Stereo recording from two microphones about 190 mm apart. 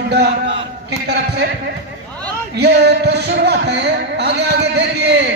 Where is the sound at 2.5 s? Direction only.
60° right (ahead or behind).